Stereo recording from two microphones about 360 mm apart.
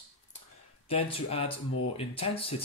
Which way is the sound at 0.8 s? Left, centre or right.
Centre.